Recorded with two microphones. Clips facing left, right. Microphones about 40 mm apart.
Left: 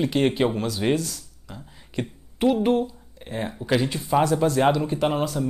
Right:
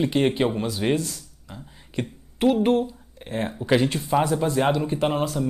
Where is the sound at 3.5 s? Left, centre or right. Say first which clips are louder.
Right 3 dB; centre.